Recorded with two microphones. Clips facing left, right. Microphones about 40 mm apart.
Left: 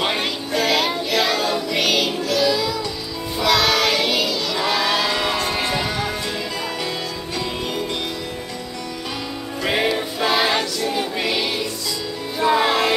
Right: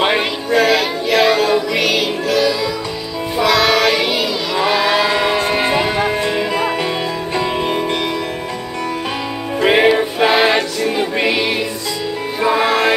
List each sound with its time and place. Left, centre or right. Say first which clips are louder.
0.0 s music: right 6 dB; right
0.6 s child singing: right 5 dB; centre
1.8 s music: right 3 dB; centre
3.4 s child singing: right 4 dB; centre
5.0 s music: right 6 dB; right
7.3 s music: right 8 dB; right
9.6 s music: right 9 dB; right
12.6 s a sound: right 4 dB; right